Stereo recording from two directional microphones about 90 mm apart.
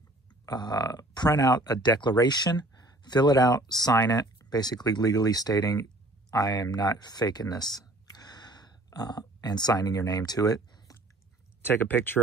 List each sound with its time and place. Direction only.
0.5 s speech: 50° left (ahead or behind)
7.7 s a sound: 50° left (ahead or behind)
11.6 s speech: 20° left (ahead or behind)